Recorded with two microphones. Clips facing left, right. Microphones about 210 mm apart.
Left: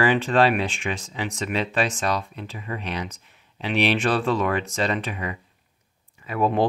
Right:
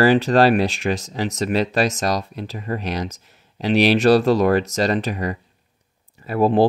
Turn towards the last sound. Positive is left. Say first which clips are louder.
# right 6 dB
turn(degrees=-35)  # may be behind; listen again after turning